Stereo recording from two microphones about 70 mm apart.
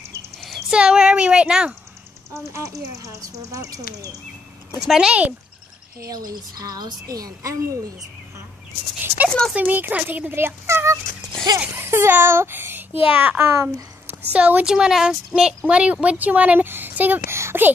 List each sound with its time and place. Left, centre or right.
0.4 s a sound: centre
0.7 s speech: centre
2.3 s speech: right
4.7 s speech: centre
6.0 s a woman's voice: right
9.6 s speech: right
11.5 s speech: right
11.8 s a child's voice: right
14.3 s speech: centre
17.3 s speech: right